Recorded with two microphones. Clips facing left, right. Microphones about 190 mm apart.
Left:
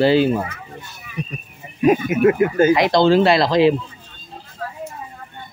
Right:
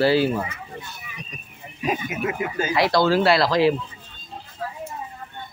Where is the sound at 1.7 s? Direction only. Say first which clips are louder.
Left 10 dB; 55° left (ahead or behind).